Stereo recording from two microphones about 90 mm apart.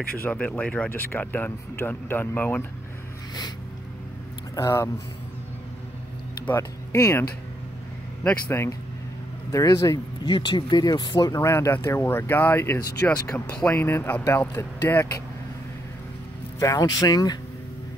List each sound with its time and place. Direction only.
0.2 s speech: 15° left (ahead or behind)
4.6 s speech: 30° left (ahead or behind)
6.4 s speech: 30° left (ahead or behind)
8.2 s speech: 15° left (ahead or behind)
9.5 s speech: 35° left (ahead or behind)
10.2 s speech: 55° left (ahead or behind)
11.4 s speech: 30° left (ahead or behind)
16.5 s speech: 40° left (ahead or behind)